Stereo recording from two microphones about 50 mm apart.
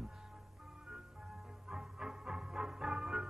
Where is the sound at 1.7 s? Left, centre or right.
Centre.